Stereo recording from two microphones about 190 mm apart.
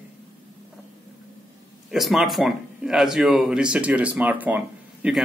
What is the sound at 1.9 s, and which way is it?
Speech, centre (ahead or behind).